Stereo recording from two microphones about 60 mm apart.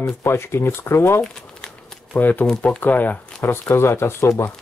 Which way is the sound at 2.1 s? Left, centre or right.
Left.